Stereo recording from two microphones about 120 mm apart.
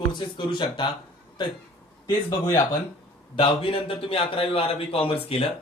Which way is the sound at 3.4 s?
45° left (ahead or behind).